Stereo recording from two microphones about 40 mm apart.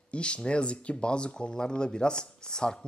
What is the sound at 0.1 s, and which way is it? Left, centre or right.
Speech, left.